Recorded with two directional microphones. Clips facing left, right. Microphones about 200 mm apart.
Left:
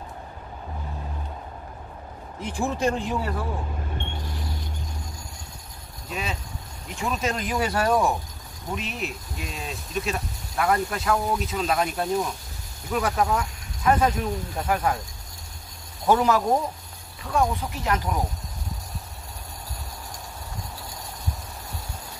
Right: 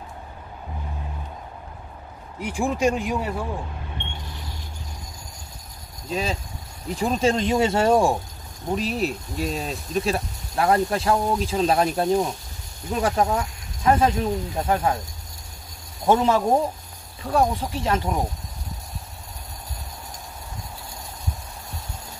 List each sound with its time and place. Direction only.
2.4 s speech: 15° right (ahead or behind)
6.0 s speech: 30° right (ahead or behind)
16.1 s speech: 25° right (ahead or behind)